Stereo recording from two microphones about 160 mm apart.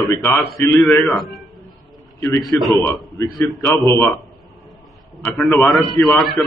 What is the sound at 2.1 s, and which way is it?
Speech, 15° left (ahead or behind).